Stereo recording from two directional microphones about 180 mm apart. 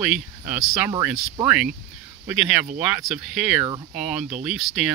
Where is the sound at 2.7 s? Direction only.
5° right (ahead or behind).